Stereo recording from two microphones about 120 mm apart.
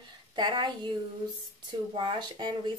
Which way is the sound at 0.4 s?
40° right (ahead or behind).